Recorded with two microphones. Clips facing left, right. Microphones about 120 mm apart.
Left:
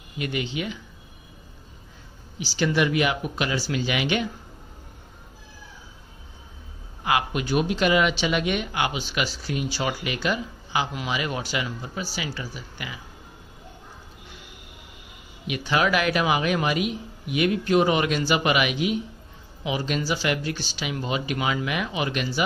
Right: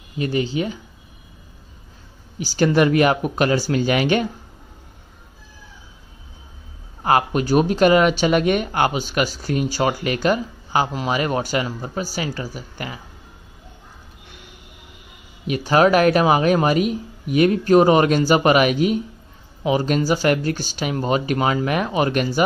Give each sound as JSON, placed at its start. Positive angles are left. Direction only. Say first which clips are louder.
{"t": 0.2, "sound": "speech", "louder": "right 7 dB", "side_deg": -35}
{"t": 2.3, "sound": "speech", "louder": "right 6 dB", "side_deg": -50}
{"t": 7.0, "sound": "speech", "louder": "right 6 dB", "side_deg": -40}
{"t": 15.4, "sound": "speech", "louder": "right 8 dB", "side_deg": -40}